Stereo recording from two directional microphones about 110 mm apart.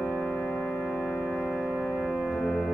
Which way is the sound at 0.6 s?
5° left (ahead or behind).